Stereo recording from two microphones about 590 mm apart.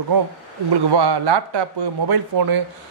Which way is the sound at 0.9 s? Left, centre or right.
Right.